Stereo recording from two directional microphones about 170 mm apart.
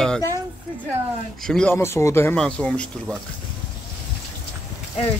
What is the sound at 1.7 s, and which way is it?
Speech, 15° left (ahead or behind).